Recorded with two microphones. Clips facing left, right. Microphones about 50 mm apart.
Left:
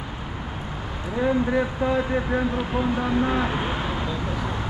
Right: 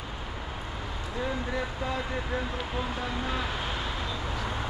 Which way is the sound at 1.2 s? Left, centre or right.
Left.